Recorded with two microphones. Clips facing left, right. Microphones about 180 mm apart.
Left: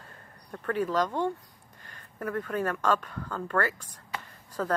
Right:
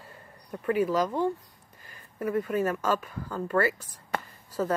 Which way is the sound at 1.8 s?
5° right (ahead or behind).